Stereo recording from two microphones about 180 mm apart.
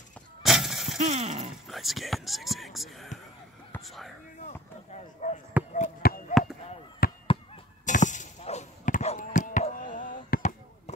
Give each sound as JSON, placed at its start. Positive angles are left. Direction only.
{"t": 0.4, "sound": "breaking", "side_deg": 0}
{"t": 0.9, "sound": "speech", "side_deg": -40}
{"t": 1.7, "sound": "speech", "side_deg": 0}
{"t": 3.7, "sound": "whispering", "side_deg": 0}
{"t": 5.2, "sound": "speech", "side_deg": 45}
{"t": 5.8, "sound": "a sound", "side_deg": 50}
{"t": 7.0, "sound": "fireworks", "side_deg": 55}
{"t": 7.8, "sound": "chop", "side_deg": 45}